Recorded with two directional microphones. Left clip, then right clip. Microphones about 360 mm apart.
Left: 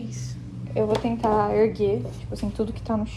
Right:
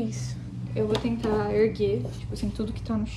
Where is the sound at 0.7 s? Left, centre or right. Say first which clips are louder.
Left 4 dB; centre.